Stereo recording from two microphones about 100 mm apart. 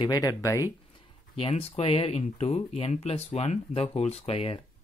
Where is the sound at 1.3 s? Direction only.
75° left (ahead or behind).